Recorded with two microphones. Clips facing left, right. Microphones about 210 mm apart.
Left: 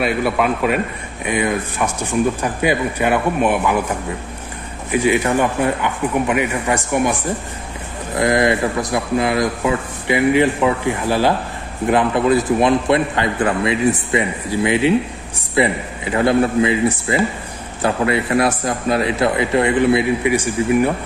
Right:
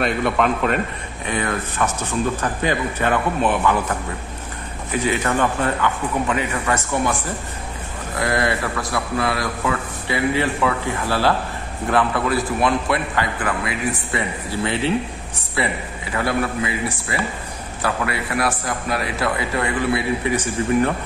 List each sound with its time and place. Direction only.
0.0 s speech: 5° left (ahead or behind)
4.9 s speech: 10° left (ahead or behind)
8.2 s speech: 20° left (ahead or behind)